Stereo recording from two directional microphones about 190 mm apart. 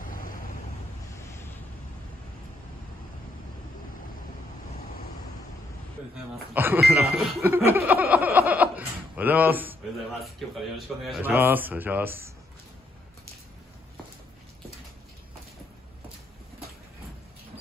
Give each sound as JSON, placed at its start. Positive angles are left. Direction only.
{"t": 0.0, "sound": "waves", "side_deg": 45}
{"t": 6.5, "sound": "speech", "side_deg": -10}
{"t": 10.4, "sound": "a man's voice", "side_deg": 0}
{"t": 11.1, "sound": "speech", "side_deg": -10}